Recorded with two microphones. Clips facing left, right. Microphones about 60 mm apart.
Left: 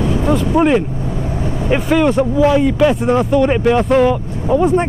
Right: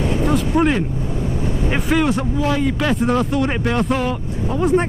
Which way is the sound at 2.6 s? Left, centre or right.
Centre.